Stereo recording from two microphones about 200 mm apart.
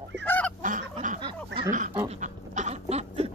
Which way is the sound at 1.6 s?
40° right (ahead or behind).